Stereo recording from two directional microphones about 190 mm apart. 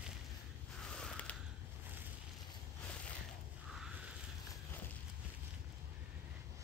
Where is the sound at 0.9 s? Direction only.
5° left (ahead or behind).